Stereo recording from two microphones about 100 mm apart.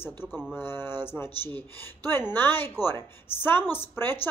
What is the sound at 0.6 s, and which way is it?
Speech, 20° left (ahead or behind).